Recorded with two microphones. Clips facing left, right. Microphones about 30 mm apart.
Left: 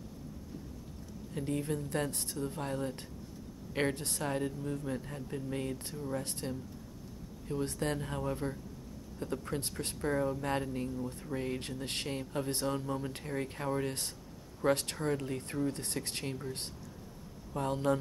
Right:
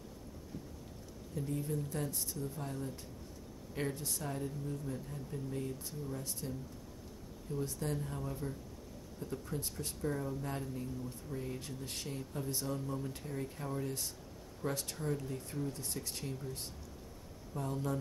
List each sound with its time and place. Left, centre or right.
1.3 s speech: left
17.6 s speech: left